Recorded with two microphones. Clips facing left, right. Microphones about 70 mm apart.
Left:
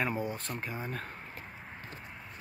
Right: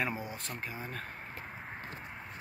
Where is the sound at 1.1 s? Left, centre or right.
Right.